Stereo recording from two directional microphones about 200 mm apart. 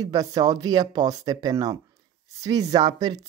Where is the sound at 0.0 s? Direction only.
20° right (ahead or behind).